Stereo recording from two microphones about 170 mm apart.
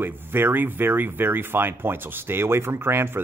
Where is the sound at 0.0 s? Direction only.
10° right (ahead or behind).